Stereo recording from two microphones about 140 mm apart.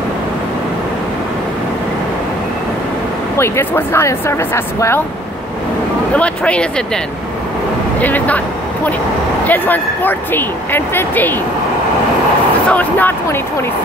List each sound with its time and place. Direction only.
3.3 s speech: 20° left (ahead or behind)
6.1 s speech: 10° left (ahead or behind)
8.0 s speech: 10° left (ahead or behind)
9.5 s speech: 15° left (ahead or behind)
12.6 s speech: 10° left (ahead or behind)